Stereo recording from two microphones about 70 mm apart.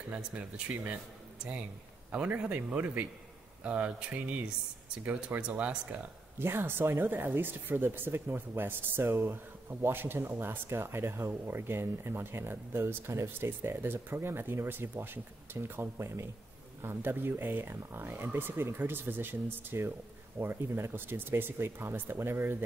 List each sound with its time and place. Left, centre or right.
0.1 s a man's voice: right
6.4 s speech: right